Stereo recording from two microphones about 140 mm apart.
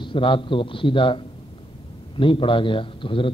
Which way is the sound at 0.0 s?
35° left (ahead or behind).